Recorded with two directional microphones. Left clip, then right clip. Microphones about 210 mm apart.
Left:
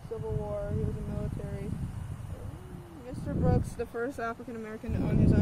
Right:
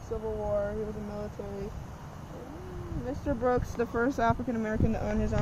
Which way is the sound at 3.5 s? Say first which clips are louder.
Right 4 dB; 40° right (ahead or behind).